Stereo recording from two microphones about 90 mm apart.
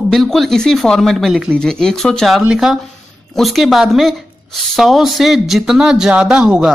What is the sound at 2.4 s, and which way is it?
Speech, 5° right (ahead or behind).